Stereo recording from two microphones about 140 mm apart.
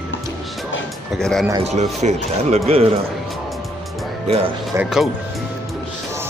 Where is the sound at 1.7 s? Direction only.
50° right (ahead or behind).